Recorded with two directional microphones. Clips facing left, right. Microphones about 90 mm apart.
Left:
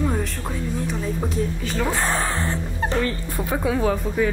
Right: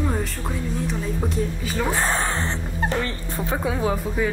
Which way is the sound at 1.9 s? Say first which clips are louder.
Right 1 dB; 25° right (ahead or behind).